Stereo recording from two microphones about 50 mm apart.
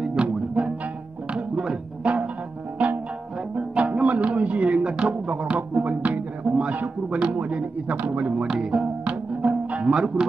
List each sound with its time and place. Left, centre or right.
0.0 s music: centre
5.9 s speech: right
6.4 s a sound: right
7.1 s a man's voice: right
8.5 s speech: centre
9.4 s music: right
9.8 s speech: centre